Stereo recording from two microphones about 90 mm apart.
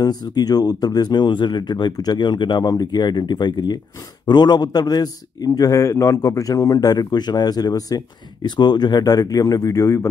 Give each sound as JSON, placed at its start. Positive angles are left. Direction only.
{"t": 0.0, "sound": "a man's voice", "side_deg": 50}